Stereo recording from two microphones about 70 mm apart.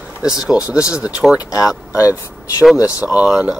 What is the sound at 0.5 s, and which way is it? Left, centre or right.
Speech, centre.